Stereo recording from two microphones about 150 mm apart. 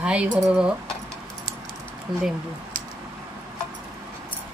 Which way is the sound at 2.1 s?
30° right (ahead or behind).